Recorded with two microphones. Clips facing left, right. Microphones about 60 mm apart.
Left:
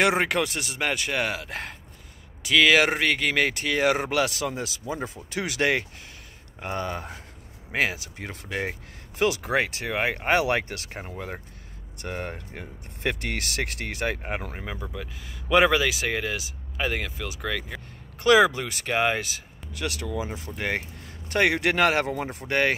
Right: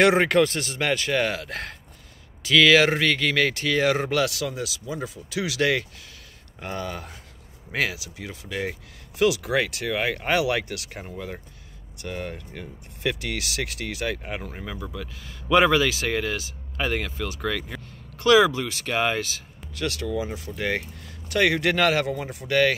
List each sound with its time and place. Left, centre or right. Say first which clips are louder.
0.0 s speech: right 4 dB; centre; by 8.0 s left
8.0 s speech: even; left
9.2 s speech: right 2 dB; left; by 17.8 s centre
18.2 s speech: right 1 dB; left